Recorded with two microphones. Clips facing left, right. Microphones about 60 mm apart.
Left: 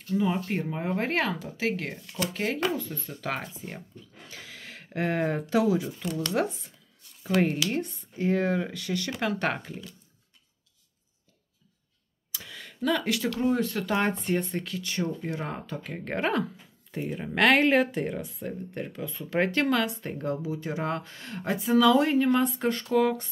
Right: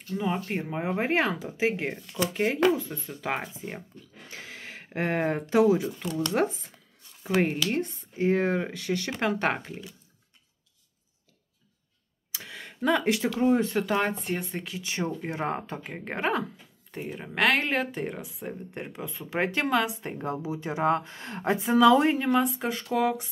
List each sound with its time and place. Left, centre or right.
0.2 s speech: centre; by 6.5 s right
7.2 s speech: centre
9.6 s speech: centre
12.3 s a sound: right
13.3 s speech: centre
13.8 s speech: centre
14.6 s speech: centre
15.0 s speech: right
15.9 s speech: centre
18.5 s speech: centre
22.3 s speech: centre